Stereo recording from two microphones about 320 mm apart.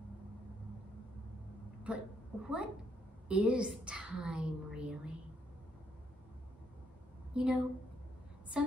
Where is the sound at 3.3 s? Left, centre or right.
Centre.